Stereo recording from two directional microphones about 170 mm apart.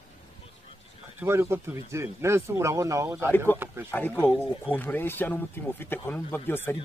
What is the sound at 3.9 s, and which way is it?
Speech, 10° left (ahead or behind).